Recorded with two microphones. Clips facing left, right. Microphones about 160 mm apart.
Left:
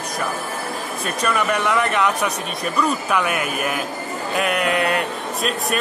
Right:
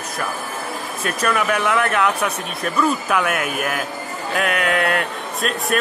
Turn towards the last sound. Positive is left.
turn(degrees=0)  # may be behind; listen again after turning